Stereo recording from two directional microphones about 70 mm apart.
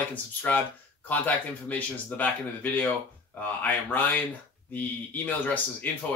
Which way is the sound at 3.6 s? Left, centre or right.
Left.